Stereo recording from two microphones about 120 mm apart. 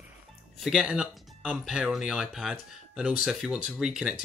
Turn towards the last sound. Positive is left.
turn(degrees=-5)  # may be behind; listen again after turning